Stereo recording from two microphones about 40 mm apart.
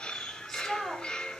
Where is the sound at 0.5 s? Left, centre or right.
Centre.